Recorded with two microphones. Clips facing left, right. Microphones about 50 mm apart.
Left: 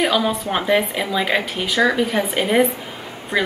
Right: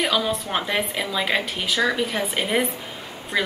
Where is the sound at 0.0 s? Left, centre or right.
Centre.